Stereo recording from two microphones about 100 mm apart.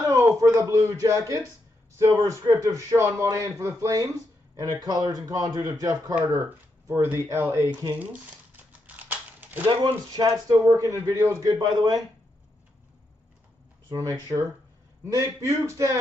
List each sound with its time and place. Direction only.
0.1 s a sound: 30° right (ahead or behind)
2.0 s speech: 30° right (ahead or behind)
6.4 s speech: 25° right (ahead or behind)
8.0 s crumpling: 15° right (ahead or behind)
9.7 s speech: 55° right (ahead or behind)
10.2 s speech: 35° right (ahead or behind)
11.5 s speech: 45° right (ahead or behind)
13.9 s speech: 30° right (ahead or behind)